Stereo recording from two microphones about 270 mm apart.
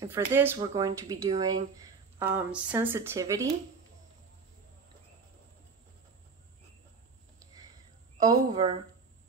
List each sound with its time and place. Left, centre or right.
0.0 s speech: centre
8.2 s speech: centre